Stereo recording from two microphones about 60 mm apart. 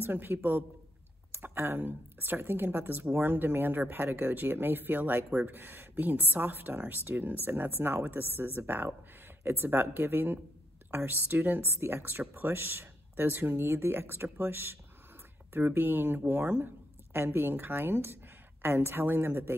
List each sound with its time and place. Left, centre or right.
0.0 s speech: right